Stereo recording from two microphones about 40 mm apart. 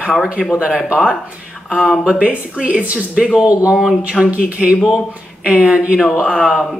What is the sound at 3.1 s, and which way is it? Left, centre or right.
Speech, right.